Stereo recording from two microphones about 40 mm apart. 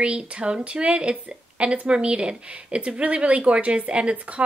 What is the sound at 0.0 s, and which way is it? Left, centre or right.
Speech, right.